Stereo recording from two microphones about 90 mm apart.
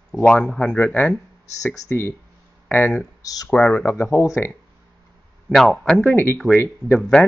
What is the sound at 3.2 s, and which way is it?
Speech, 45° left (ahead or behind).